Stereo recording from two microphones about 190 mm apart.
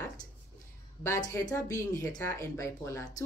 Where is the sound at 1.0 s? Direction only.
15° left (ahead or behind).